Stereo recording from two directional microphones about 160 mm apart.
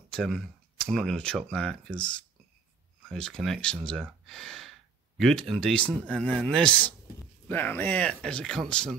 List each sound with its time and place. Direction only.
0.1 s speech: centre (ahead or behind)